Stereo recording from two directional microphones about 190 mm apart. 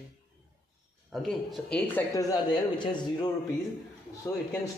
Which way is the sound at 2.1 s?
20° left (ahead or behind).